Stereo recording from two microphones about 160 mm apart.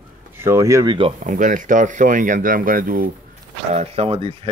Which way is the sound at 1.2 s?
55° right (ahead or behind).